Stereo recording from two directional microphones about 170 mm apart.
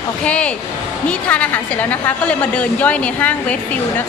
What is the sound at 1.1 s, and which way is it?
A woman's voice, 10° left (ahead or behind).